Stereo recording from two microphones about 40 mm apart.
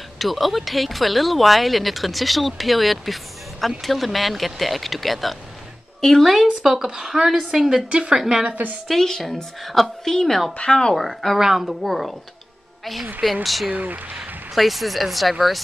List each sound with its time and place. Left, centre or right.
0.2 s speech: centre
6.6 s speech: centre
8.5 s a woman's voice: right
8.8 s a woman's voice: centre
10.6 s speech: left
11.0 s speech: centre
11.3 s speech: centre
13.2 s speech: centre
13.7 s a woman's voice: right
14.5 s speech: centre